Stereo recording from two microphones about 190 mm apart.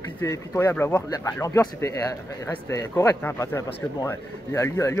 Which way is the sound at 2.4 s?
10° left (ahead or behind).